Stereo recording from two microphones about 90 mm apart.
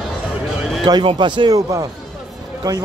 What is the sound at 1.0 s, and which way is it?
Speech, 65° right (ahead or behind).